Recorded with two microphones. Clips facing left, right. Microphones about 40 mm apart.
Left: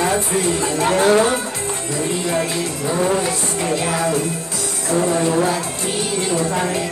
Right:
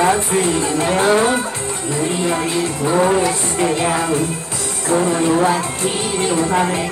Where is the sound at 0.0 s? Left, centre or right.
Right.